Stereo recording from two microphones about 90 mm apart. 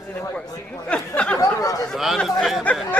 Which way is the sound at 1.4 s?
40° left (ahead or behind).